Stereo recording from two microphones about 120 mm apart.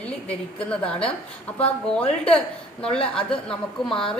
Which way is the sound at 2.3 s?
5° left (ahead or behind).